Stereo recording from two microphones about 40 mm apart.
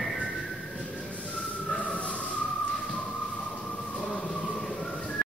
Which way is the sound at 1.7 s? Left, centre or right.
Left.